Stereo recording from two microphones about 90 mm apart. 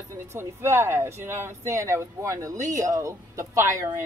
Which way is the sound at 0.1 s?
30° right (ahead or behind).